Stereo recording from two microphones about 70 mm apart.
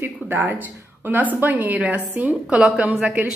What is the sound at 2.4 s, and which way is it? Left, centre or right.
Speech, centre.